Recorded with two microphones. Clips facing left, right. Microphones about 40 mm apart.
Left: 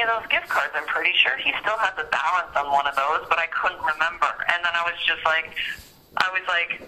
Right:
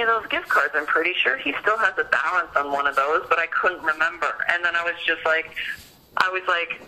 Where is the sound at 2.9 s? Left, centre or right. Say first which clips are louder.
Right 2 dB; left.